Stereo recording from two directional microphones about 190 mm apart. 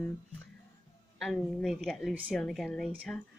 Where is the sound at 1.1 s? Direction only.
Centre (ahead or behind).